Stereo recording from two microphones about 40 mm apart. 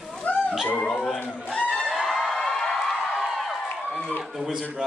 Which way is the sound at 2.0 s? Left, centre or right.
Centre.